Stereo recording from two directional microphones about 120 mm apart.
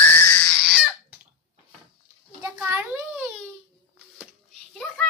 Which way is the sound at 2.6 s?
15° right (ahead or behind).